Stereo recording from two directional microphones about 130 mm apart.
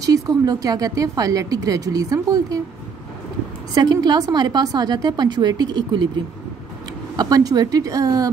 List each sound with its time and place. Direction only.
0.0 s speech: 30° right (ahead or behind)
3.7 s a woman's voice: 30° right (ahead or behind)
7.2 s speech: 30° right (ahead or behind)